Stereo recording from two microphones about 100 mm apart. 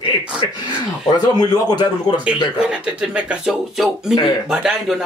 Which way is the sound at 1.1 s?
45° left (ahead or behind).